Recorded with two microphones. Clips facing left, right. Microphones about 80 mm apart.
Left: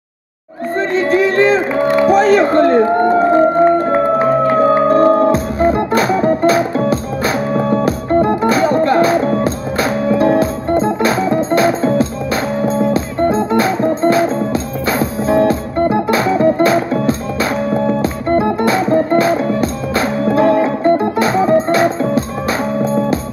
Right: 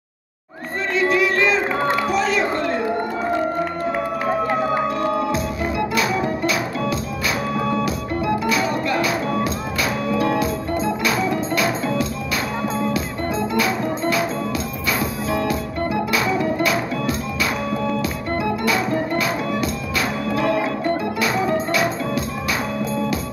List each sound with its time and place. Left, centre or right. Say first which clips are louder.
0.9 s music: left 5 dB; left